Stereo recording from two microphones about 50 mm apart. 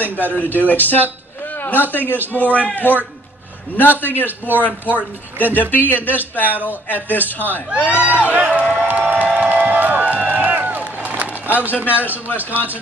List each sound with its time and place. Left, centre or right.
0.0 s a man's voice: left
8.2 s speech: right
8.8 s a sound: right
11.7 s a man's voice: left
12.4 s speech: right